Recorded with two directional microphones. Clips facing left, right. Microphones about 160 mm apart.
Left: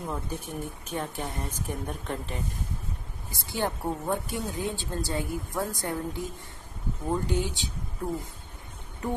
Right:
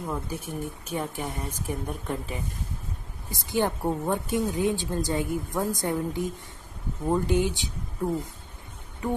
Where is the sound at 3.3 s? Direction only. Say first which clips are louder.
Right 4 dB; 15° right (ahead or behind).